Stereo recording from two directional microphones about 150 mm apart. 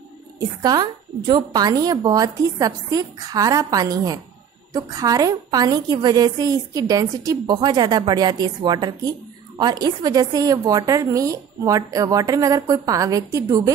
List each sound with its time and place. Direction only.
0.4 s a woman's voice: 25° right (ahead or behind)